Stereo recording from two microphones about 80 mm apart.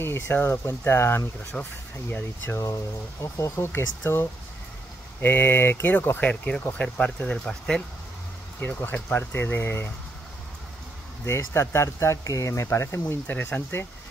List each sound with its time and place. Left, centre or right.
0.0 s speech: left
1.5 s speech: centre
2.6 s speech: left; by 7.8 s centre
8.5 s speech: left
11.2 s speech: left